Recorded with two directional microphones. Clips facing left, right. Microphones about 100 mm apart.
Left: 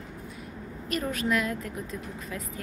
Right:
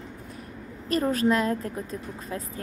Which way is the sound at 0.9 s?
35° right (ahead or behind).